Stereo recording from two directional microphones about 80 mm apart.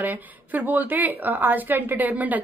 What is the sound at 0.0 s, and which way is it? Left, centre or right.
A woman's voice, right.